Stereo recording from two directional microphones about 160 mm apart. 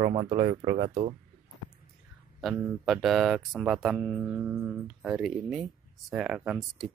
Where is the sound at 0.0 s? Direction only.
35° right (ahead or behind).